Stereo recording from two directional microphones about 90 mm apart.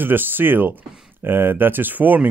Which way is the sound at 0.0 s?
20° right (ahead or behind).